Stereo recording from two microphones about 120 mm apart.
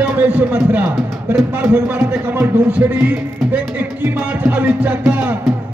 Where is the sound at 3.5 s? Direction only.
15° right (ahead or behind).